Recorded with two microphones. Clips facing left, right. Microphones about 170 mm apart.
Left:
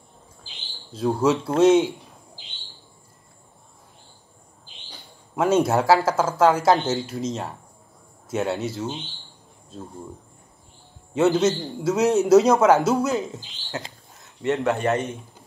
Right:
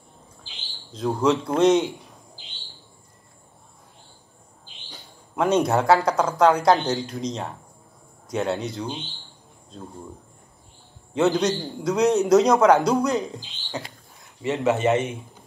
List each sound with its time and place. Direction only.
0.9 s a man's voice: 10° left (ahead or behind)
5.3 s a man's voice: 5° left (ahead or behind)
11.1 s a man's voice: 5° left (ahead or behind)